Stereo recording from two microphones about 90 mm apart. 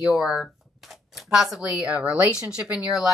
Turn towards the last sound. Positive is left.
turn(degrees=-10)  # may be behind; listen again after turning